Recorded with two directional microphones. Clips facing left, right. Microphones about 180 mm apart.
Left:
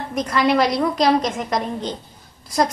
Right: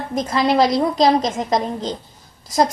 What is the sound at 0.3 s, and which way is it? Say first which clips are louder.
A woman's voice: right 1 dB; 25° right (ahead or behind).